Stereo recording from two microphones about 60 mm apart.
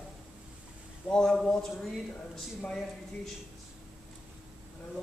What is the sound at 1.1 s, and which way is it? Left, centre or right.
Speech, centre.